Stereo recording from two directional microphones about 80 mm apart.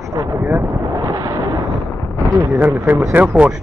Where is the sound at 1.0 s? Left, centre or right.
Right.